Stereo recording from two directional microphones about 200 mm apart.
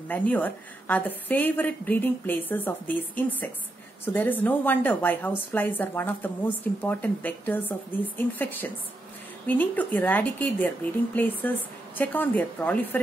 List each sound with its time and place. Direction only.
0.1 s a woman's voice: 10° left (ahead or behind)